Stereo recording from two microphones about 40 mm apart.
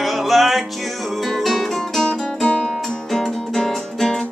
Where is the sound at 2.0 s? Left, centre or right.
Centre.